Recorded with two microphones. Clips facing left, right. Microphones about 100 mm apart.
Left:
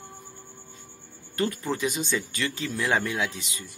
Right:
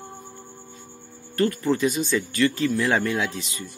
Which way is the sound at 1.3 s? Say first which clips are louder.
Right 6 dB; 15° left (ahead or behind).